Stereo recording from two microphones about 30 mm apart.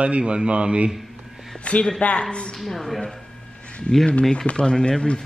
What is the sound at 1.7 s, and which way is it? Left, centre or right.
Speech, left.